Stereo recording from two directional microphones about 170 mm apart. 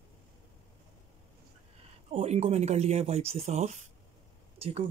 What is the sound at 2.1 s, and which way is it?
Speech, 35° right (ahead or behind).